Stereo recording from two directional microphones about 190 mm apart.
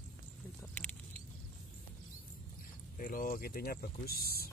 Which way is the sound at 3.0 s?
50° left (ahead or behind).